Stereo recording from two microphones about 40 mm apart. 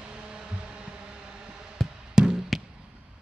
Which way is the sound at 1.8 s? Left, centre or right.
Centre.